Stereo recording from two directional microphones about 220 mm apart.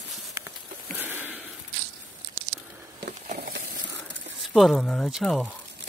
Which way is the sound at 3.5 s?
55° right (ahead or behind).